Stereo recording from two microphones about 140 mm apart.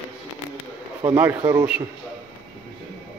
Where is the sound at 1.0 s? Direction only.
15° right (ahead or behind).